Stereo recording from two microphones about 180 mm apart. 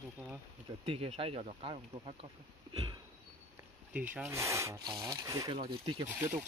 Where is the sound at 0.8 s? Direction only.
35° right (ahead or behind).